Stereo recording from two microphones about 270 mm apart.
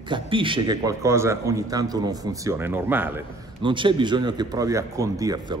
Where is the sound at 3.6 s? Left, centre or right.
Centre.